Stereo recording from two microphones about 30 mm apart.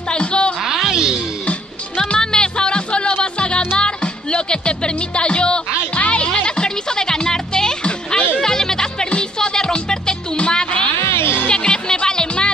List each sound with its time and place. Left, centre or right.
0.1 s music: left
0.8 s music: right
2.0 s music: left